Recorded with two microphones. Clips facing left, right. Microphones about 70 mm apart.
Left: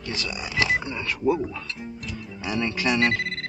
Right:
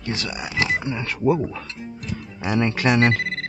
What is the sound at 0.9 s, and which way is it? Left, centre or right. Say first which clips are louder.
Speech: right 3 dB; right.